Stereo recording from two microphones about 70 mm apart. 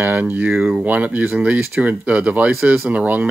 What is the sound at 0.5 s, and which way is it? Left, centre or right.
Speech, centre.